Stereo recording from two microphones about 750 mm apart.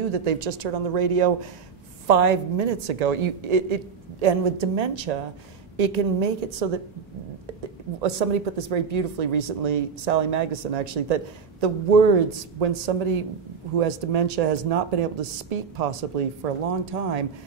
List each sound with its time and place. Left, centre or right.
0.1 s speech: right
8.0 s speech: right